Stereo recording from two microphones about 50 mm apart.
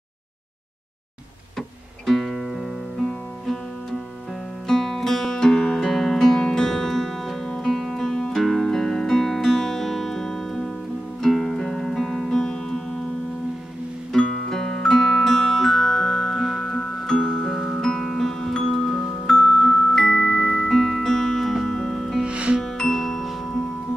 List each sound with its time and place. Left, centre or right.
2.0 s music: centre
4.6 s music: centre
14.1 s music: centre
16.7 s music: centre
22.2 s music: right
22.6 s music: centre